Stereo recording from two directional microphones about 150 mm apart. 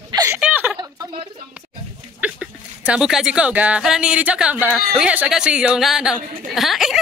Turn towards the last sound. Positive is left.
turn(degrees=0)  # may be behind; listen again after turning